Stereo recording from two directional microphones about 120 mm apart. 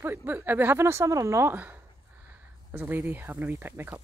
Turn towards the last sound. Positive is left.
turn(degrees=-20)  # may be behind; listen again after turning